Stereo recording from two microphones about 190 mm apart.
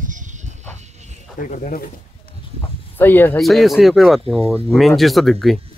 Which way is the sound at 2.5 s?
10° left (ahead or behind).